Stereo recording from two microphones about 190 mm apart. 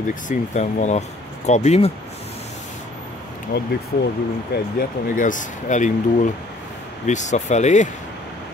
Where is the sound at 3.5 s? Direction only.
55° left (ahead or behind); by 7.9 s 40° left (ahead or behind).